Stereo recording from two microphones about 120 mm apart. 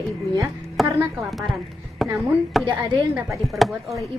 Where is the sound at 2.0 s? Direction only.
Centre (ahead or behind).